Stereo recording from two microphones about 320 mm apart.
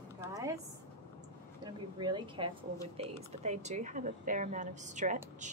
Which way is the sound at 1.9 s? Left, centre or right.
Centre.